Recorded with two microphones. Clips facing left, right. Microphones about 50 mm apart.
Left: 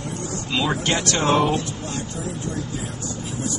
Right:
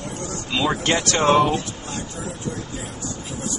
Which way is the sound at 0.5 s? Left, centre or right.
Centre.